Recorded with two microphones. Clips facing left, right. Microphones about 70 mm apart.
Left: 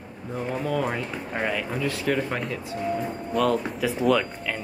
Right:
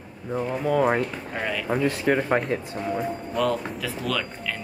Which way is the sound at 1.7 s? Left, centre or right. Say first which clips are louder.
Right 3 dB; right.